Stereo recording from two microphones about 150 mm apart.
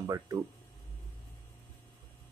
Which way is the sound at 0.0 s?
20° right (ahead or behind).